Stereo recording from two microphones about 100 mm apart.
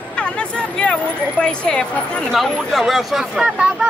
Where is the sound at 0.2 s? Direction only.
10° left (ahead or behind).